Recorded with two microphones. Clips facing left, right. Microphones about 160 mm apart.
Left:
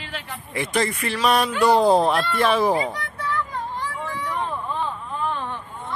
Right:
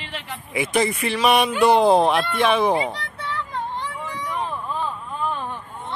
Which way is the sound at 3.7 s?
15° right (ahead or behind).